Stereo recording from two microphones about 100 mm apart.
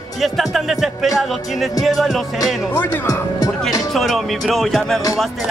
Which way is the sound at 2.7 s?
25° left (ahead or behind).